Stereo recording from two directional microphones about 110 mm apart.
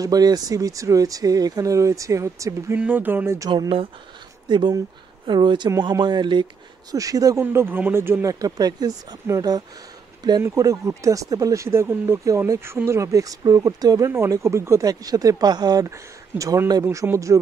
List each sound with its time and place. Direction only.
0.0 s speech: 35° right (ahead or behind)
2.8 s speech: 15° right (ahead or behind)
3.3 s speech: 40° right (ahead or behind)
7.0 s speech: 30° right (ahead or behind)